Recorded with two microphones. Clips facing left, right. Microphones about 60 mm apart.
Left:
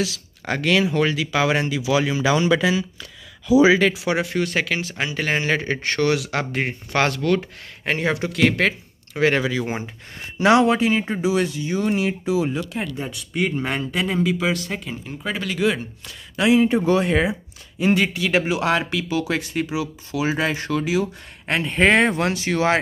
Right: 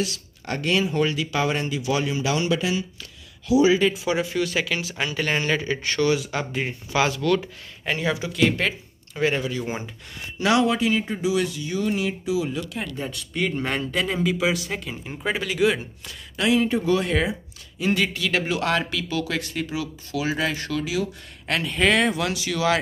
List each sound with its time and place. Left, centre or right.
0.5 s speech: left
3.7 s speech: left
4.4 s speech: left
5.1 s speech: left
5.5 s speech: left
6.1 s speech: left
6.7 s speech: left
7.2 s speech: left
7.8 s speech: left
8.3 s a man's voice: left
10.4 s speech: left
12.8 s speech: centre
16.3 s speech: centre; by 22.8 s left